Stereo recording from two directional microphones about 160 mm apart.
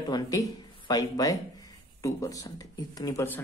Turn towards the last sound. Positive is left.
turn(degrees=15)  # may be behind; listen again after turning